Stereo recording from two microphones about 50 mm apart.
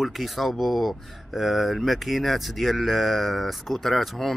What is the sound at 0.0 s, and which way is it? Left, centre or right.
A man's voice, centre.